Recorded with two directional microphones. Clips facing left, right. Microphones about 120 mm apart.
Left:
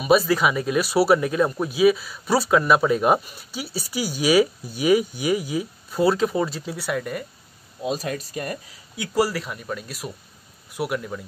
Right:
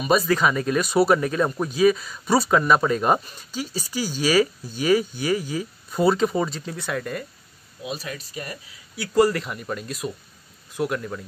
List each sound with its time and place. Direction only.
0.0 s speech: 5° left (ahead or behind)
7.8 s speech: 45° left (ahead or behind)
8.9 s speech: 15° left (ahead or behind)